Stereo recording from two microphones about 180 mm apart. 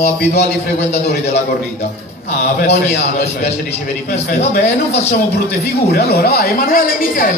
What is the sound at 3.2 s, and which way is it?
A man's voice, 35° left (ahead or behind).